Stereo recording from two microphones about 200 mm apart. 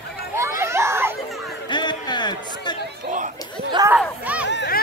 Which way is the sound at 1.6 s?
20° left (ahead or behind).